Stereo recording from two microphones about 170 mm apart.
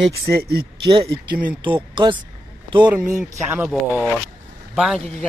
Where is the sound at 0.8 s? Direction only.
30° right (ahead or behind).